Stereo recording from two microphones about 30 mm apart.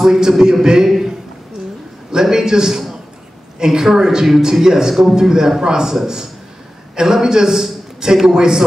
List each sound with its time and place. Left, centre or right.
0.0 s a man's voice: centre
0.8 s a man's voice: centre
2.2 s a man's voice: centre
7.0 s a man's voice: centre